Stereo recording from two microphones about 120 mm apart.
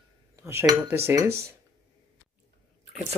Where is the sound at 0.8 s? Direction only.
20° right (ahead or behind).